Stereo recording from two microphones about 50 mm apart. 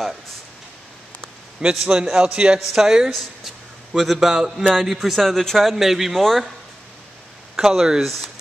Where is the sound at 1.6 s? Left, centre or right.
Centre.